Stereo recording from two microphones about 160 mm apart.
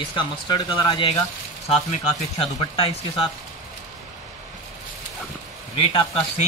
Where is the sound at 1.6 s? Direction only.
40° left (ahead or behind).